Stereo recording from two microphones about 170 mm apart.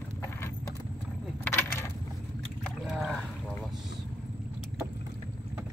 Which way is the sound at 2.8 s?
Centre (ahead or behind).